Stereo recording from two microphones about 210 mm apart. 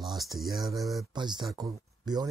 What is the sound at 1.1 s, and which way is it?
Speech, 20° right (ahead or behind).